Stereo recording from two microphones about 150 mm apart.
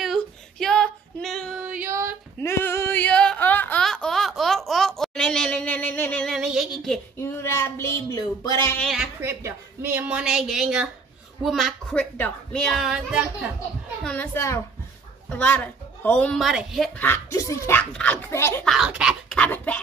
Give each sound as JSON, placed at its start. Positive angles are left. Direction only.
{"t": 0.0, "sound": "female singing", "side_deg": 0}
{"t": 1.6, "sound": "female singing", "side_deg": -10}
{"t": 2.4, "sound": "a sound", "side_deg": 15}
{"t": 6.3, "sound": "female singing", "side_deg": -5}
{"t": 7.2, "sound": "a sound", "side_deg": 15}
{"t": 8.8, "sound": "a woman's voice", "side_deg": -5}
{"t": 9.2, "sound": "a woman's voice", "side_deg": -15}
{"t": 14.0, "sound": "a woman's voice", "side_deg": 10}
{"t": 17.0, "sound": "a woman's voice", "side_deg": 15}
{"t": 18.6, "sound": "a woman's voice", "side_deg": 0}
{"t": 19.3, "sound": "a woman's voice", "side_deg": 10}